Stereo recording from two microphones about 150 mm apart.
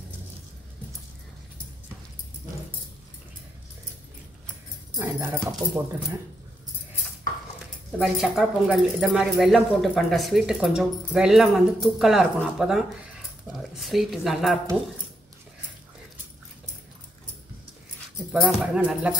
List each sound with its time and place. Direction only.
4.9 s speech: 20° right (ahead or behind)
7.5 s speech: centre (ahead or behind)
18.3 s speech: 5° right (ahead or behind)